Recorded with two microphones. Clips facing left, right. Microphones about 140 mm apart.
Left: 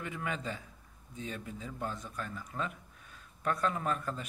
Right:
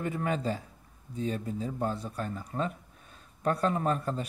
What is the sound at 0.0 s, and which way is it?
A man's voice, 40° right (ahead or behind).